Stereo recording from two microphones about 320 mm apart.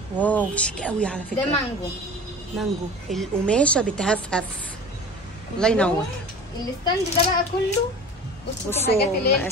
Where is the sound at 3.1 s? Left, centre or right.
Centre.